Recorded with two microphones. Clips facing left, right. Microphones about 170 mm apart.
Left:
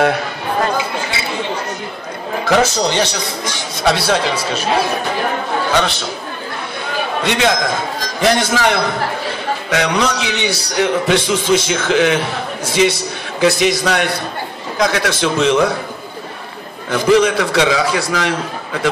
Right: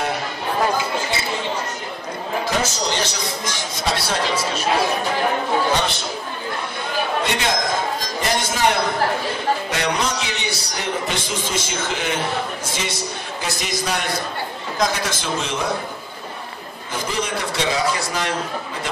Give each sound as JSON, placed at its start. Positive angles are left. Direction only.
{"t": 2.4, "sound": "a man's voice", "side_deg": 65}
{"t": 5.8, "sound": "a man's voice", "side_deg": 70}
{"t": 7.2, "sound": "a man's voice", "side_deg": 90}
{"t": 8.0, "sound": "a man's voice", "side_deg": 75}
{"t": 12.6, "sound": "a man's voice", "side_deg": 70}
{"t": 16.9, "sound": "a man's voice", "side_deg": 75}